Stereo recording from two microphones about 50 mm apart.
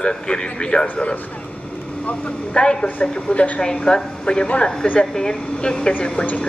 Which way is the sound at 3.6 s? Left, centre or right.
Centre.